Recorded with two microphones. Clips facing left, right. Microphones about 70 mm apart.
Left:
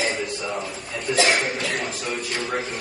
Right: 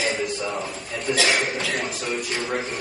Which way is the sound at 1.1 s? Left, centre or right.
Left.